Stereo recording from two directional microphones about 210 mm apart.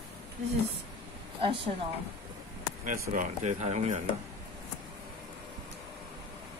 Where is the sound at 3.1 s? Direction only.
35° right (ahead or behind).